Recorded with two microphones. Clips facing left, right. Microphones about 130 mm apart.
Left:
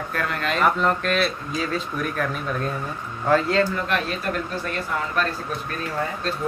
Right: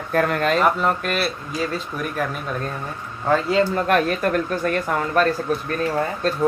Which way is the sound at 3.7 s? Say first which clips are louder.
Right 6 dB; 45° right (ahead or behind).